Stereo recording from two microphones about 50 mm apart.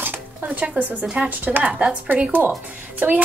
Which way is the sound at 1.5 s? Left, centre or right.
Right.